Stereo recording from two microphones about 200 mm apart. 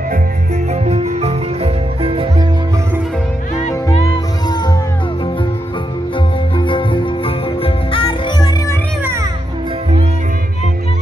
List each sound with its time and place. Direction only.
0.8 s music: 30° right (ahead or behind)
3.6 s music: 30° left (ahead or behind)
6.1 s music: 25° left (ahead or behind)